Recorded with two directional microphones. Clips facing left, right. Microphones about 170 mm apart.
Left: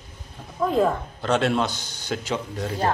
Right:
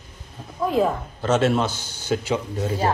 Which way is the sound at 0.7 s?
5° right (ahead or behind).